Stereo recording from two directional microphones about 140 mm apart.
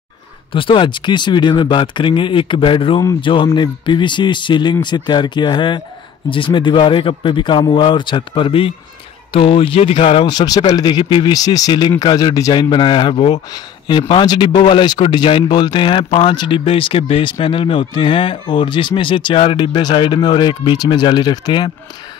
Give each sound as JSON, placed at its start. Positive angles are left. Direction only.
{"t": 0.5, "sound": "speech", "side_deg": 40}
{"t": 10.2, "sound": "speech", "side_deg": 30}